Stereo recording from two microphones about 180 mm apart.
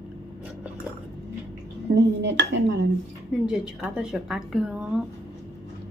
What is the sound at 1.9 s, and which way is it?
Speech, 70° right (ahead or behind).